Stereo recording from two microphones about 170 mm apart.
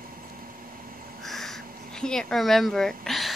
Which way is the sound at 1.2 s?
Centre (ahead or behind).